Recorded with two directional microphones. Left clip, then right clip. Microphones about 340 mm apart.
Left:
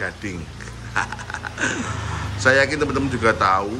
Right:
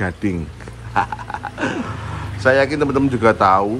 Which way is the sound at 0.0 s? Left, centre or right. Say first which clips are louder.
Right 5 dB; centre.